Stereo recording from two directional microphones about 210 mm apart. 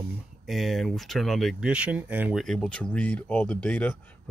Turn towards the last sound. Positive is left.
turn(degrees=5)  # may be behind; listen again after turning